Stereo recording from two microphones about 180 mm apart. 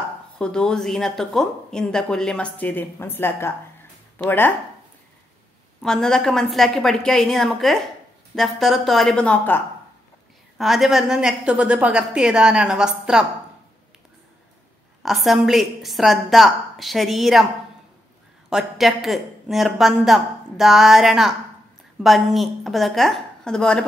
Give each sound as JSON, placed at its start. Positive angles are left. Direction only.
{"t": 0.4, "sound": "a woman's voice", "side_deg": 5}
{"t": 5.8, "sound": "a woman's voice", "side_deg": 5}
{"t": 10.6, "sound": "a woman's voice", "side_deg": 0}
{"t": 15.0, "sound": "a woman's voice", "side_deg": 0}
{"t": 18.5, "sound": "a woman's voice", "side_deg": 0}